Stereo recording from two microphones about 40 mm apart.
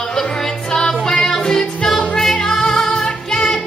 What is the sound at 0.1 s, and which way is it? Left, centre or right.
Music, centre.